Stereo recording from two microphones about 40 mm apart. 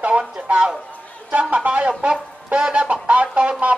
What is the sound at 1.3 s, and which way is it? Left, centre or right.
A man's voice, right.